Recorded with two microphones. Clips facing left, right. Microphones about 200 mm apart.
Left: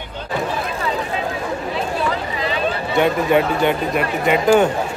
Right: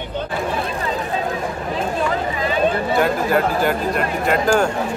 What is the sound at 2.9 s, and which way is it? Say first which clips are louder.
Speech: left 7 dB; centre (ahead or behind).